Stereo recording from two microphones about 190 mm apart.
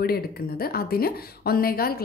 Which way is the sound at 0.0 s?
55° left (ahead or behind).